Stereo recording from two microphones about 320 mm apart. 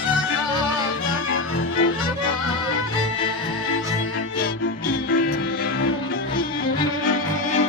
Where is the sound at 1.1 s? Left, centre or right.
Left.